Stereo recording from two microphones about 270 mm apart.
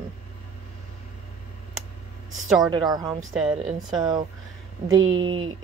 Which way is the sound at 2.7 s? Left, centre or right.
Centre.